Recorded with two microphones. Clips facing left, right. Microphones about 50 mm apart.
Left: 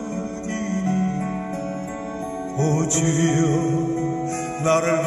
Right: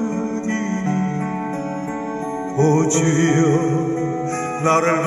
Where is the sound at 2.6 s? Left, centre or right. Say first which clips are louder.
Right 6 dB; right.